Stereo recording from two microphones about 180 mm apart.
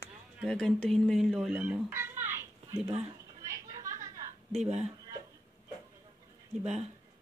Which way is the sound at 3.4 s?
15° right (ahead or behind).